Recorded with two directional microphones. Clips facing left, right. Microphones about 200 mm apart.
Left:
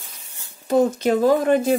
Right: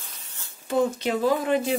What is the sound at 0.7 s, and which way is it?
Speech, 45° left (ahead or behind).